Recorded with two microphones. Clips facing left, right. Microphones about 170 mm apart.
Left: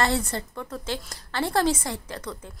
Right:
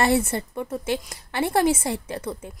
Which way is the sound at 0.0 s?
25° right (ahead or behind).